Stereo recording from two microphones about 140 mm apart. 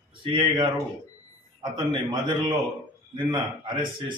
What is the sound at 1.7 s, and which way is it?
A man's voice, 35° right (ahead or behind).